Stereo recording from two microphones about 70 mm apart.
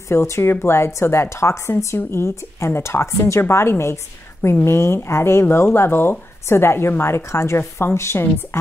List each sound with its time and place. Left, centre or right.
0.1 s speech: left